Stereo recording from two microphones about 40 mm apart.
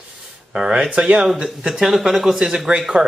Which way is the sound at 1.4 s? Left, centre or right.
Centre.